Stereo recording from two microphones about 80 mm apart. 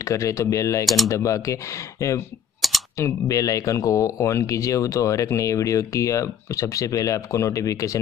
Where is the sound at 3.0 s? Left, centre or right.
Left.